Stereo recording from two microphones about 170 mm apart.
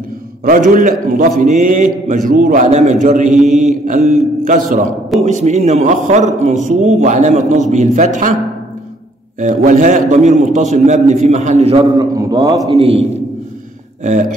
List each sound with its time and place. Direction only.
0.5 s a man's voice: 50° right (ahead or behind)
9.4 s a man's voice: 50° right (ahead or behind); by 12.5 s 20° right (ahead or behind)
12.6 s a man's voice: 35° right (ahead or behind)